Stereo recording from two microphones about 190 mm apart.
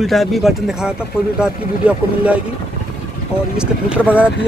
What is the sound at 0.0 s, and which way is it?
Speech, centre (ahead or behind).